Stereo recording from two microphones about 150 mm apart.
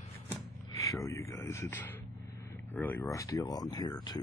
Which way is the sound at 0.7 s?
20° left (ahead or behind).